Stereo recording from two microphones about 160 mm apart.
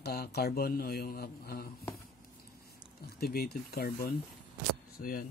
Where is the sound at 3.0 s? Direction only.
75° left (ahead or behind).